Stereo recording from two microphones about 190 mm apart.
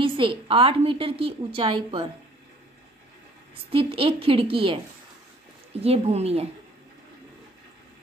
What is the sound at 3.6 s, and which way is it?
A woman's voice, 30° right (ahead or behind).